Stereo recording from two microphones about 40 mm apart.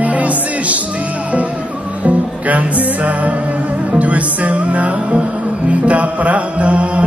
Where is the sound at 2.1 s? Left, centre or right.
Right.